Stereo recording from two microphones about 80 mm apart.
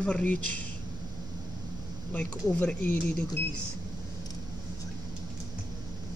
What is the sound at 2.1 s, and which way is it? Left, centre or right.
Speech, centre.